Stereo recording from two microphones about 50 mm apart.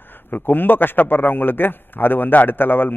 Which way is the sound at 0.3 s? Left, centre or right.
Left.